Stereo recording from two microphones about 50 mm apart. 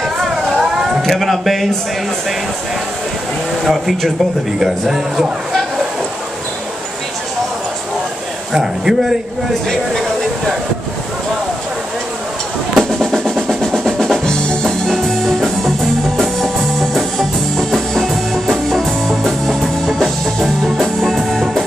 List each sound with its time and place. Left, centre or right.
0.0 s a sound: centre
1.0 s speech: centre
3.6 s speech: centre
8.5 s speech: centre
12.7 s percussion: centre
14.2 s drum kit: centre
14.9 s music: centre